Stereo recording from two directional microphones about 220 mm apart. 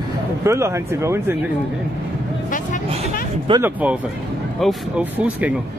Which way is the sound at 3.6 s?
5° right (ahead or behind).